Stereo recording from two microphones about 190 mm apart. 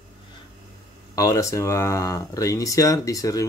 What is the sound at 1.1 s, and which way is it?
Speech, 15° left (ahead or behind).